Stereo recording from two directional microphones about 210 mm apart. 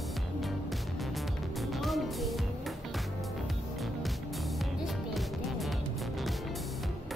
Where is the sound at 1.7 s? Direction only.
Centre (ahead or behind).